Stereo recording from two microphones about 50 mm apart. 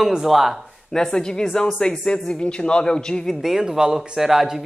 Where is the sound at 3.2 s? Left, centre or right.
Centre.